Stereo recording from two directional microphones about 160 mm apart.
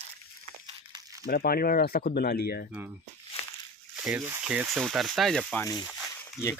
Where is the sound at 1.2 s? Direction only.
70° left (ahead or behind).